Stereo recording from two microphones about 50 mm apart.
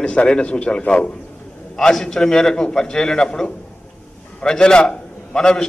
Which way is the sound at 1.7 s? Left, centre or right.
Centre.